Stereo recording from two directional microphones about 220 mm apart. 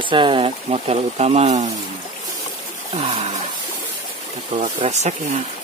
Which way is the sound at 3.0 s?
30° right (ahead or behind).